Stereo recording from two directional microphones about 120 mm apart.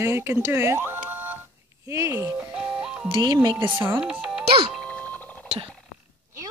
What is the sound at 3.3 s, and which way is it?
Speech, 30° right (ahead or behind).